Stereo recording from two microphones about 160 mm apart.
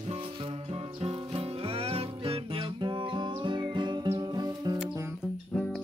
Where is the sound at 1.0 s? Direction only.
35° right (ahead or behind).